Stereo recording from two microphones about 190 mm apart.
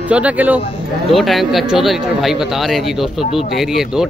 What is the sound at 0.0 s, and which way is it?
Speech, 5° right (ahead or behind).